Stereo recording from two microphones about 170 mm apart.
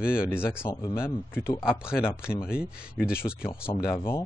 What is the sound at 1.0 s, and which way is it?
Speech, 15° left (ahead or behind).